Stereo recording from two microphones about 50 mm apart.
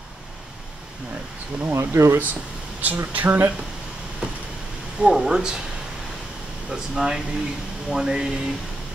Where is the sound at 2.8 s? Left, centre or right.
Right.